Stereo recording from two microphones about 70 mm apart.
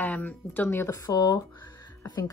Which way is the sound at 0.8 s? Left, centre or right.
Left.